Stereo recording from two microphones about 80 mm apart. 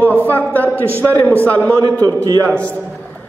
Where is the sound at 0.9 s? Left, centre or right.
Left.